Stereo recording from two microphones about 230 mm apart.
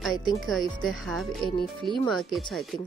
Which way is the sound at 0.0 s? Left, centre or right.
Centre.